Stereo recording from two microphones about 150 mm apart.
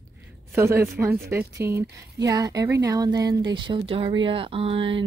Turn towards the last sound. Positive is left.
turn(degrees=-35)  # may be behind; listen again after turning